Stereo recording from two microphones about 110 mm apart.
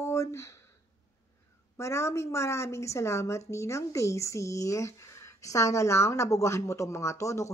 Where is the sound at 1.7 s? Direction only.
25° left (ahead or behind).